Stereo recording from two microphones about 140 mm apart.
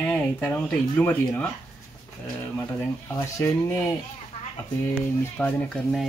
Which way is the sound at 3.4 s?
20° left (ahead or behind).